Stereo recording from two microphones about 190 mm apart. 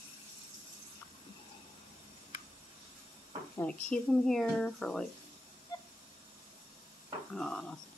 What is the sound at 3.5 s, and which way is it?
Speech, 5° left (ahead or behind).